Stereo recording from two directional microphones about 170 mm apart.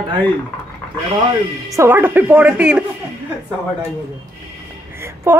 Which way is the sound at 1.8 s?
15° right (ahead or behind).